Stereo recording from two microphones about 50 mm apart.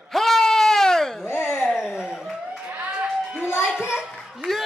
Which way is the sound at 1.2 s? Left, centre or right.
Left.